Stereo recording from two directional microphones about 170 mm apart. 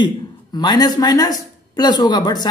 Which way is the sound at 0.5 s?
25° left (ahead or behind).